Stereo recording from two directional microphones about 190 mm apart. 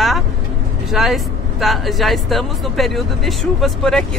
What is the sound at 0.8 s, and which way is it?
Speech, centre (ahead or behind).